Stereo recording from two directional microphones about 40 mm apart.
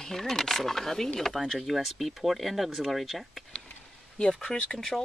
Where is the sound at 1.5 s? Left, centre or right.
Centre.